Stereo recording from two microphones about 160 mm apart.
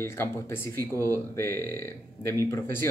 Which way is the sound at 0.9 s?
20° right (ahead or behind).